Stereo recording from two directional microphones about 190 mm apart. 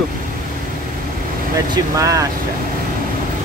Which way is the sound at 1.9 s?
15° right (ahead or behind).